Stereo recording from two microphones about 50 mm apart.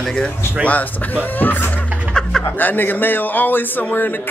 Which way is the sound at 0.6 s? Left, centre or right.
Right.